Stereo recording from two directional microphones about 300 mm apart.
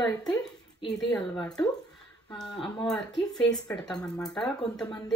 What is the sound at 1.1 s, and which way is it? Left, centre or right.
A woman's voice, centre.